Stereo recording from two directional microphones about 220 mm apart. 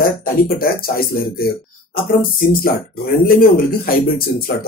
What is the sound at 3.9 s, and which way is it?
Speech, 40° left (ahead or behind).